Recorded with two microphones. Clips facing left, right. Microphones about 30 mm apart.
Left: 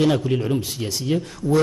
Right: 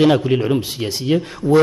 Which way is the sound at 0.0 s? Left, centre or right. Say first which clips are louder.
Right 5 dB; right.